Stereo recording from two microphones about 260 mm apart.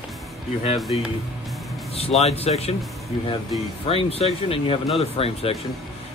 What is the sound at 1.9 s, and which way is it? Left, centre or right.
Speech, left.